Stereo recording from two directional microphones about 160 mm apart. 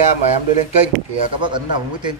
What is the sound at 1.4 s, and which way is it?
Speech, 30° right (ahead or behind).